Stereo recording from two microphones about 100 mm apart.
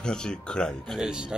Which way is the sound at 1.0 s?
10° right (ahead or behind).